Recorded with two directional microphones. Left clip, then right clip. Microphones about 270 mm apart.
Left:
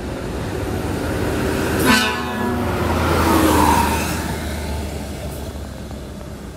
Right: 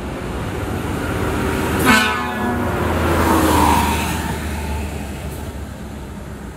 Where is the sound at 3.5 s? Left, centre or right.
Centre.